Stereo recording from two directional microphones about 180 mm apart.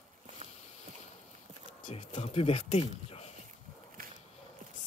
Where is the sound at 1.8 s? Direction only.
40° left (ahead or behind).